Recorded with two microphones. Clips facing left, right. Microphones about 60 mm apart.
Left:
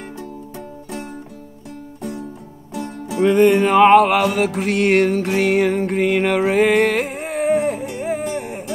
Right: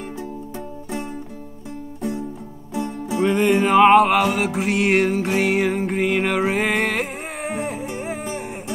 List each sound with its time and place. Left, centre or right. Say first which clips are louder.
2.7 s music: right 2 dB; right
3.3 s music: left 4 dB; centre